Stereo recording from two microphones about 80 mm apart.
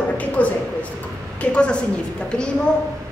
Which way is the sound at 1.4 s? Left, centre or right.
Centre.